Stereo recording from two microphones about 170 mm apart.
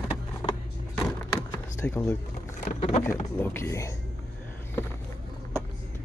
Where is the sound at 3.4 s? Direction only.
15° left (ahead or behind).